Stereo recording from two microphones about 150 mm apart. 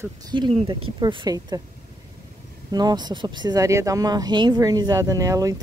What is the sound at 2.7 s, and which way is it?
Speech, 30° right (ahead or behind).